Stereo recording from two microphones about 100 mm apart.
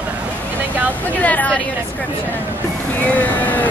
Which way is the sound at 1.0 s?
15° left (ahead or behind).